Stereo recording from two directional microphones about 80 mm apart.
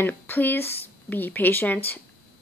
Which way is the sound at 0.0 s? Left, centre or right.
Left.